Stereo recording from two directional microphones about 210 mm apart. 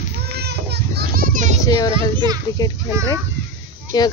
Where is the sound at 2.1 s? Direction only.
20° right (ahead or behind).